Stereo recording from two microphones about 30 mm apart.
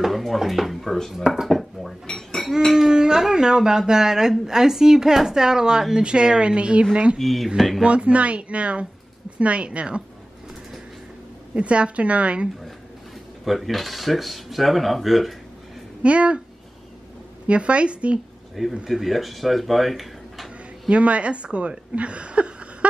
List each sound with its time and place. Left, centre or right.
0.1 s speech: centre
0.8 s speech: centre
1.1 s speech: centre
1.5 s dishes: centre
2.7 s a woman's voice: right
7.2 s speech: centre
7.4 s speech: centre
7.8 s a woman's voice: right
11.5 s a woman's voice: right
13.5 s speech: centre
16.0 s a woman's voice: right
17.5 s a woman's voice: right
18.9 s speech: centre
20.9 s a woman's voice: right